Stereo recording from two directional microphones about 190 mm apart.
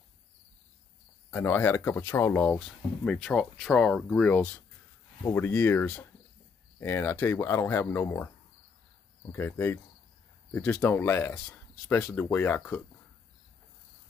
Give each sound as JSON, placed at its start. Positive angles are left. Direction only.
{"t": 1.3, "sound": "speech", "side_deg": 10}
{"t": 9.3, "sound": "speech", "side_deg": 10}